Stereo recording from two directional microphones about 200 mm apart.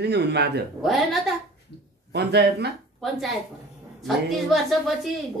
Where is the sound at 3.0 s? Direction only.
Centre (ahead or behind).